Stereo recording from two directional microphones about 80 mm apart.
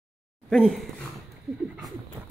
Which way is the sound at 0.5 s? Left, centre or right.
Centre.